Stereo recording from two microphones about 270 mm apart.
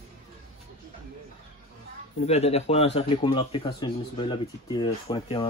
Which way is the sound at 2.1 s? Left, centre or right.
Left.